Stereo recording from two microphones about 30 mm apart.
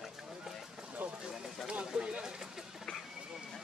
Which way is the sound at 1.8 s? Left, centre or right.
Right.